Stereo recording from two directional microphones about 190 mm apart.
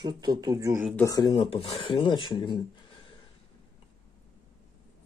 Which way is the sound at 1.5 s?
30° left (ahead or behind).